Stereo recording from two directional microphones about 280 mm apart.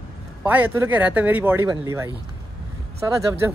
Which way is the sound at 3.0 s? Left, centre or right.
Centre.